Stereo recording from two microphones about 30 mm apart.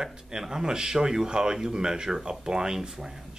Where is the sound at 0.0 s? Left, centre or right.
Right.